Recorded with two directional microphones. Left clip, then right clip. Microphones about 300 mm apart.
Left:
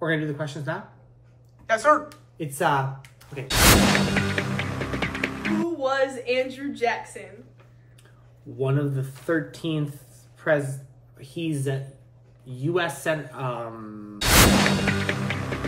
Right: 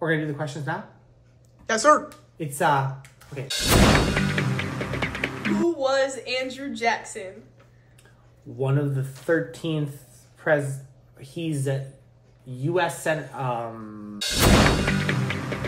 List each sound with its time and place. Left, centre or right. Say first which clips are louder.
0.0 s speech: right 1 dB; centre
5.8 s a woman's voice: right 1 dB; centre
8.5 s speech: even; centre
11.1 s speech: left 1 dB; centre